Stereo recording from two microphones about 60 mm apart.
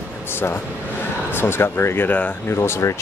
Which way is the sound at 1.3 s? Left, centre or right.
Left.